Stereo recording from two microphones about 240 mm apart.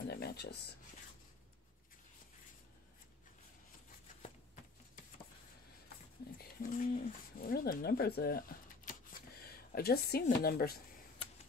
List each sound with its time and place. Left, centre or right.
0.1 s speech: left
6.3 s speech: left